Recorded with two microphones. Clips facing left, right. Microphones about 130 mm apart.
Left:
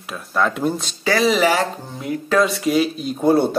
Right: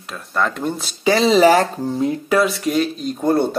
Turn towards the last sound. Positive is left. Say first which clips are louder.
# left 1 dB
turn(degrees=5)  # may be behind; listen again after turning